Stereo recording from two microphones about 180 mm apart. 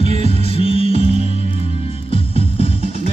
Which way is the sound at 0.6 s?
30° left (ahead or behind).